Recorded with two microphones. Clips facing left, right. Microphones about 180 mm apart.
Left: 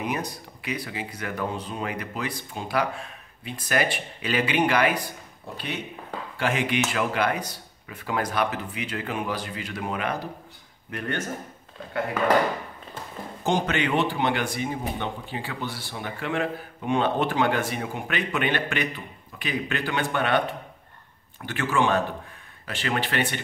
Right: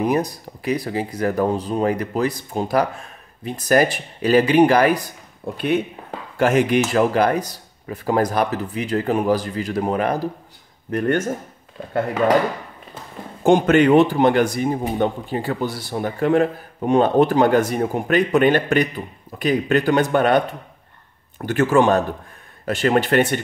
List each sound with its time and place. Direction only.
0.0 s speech: 40° right (ahead or behind)
6.3 s chop: 45° right (ahead or behind)
6.9 s a man's voice: 40° right (ahead or behind)
13.4 s a man's voice: 55° right (ahead or behind)